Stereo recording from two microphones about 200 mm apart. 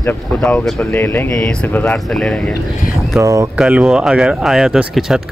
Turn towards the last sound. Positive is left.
turn(degrees=-5)  # may be behind; listen again after turning